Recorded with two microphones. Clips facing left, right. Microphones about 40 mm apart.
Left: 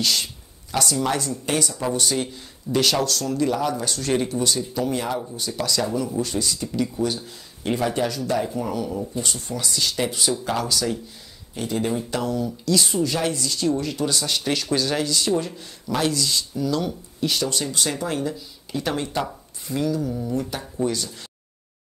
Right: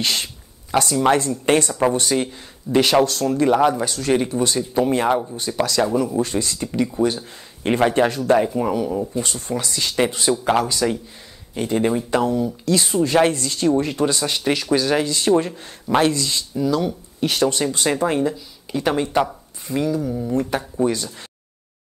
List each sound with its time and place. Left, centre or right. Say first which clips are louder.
0.0 s speech: right 1 dB; right
0.7 s speech: right 6 dB; right
3.8 s speech: right 4 dB; centre
4.6 s speech: right 6 dB; right
7.6 s speech: right 6 dB; right
8.5 s speech: right 5 dB; right
15.0 s speech: right 5 dB; right
16.5 s speech: right 6 dB; centre
17.2 s speech: right 5 dB; right; by 20.3 s centre
20.4 s speech: right 5 dB; right